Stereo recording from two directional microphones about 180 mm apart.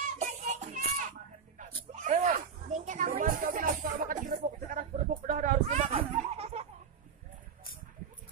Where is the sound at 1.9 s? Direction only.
40° right (ahead or behind).